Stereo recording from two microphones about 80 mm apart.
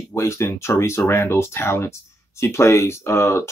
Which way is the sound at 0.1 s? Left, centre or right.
Left.